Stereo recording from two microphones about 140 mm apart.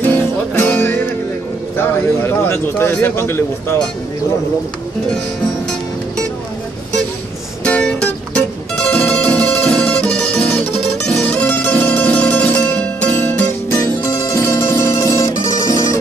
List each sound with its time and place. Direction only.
0.0 s music: 10° left (ahead or behind)
1.8 s a man's voice: 15° left (ahead or behind)
7.6 s music: 10° left (ahead or behind)